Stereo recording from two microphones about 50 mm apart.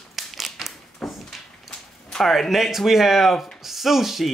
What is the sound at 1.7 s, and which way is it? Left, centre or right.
Speech, centre.